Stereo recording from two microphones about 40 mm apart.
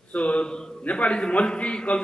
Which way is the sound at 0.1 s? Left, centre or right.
Left.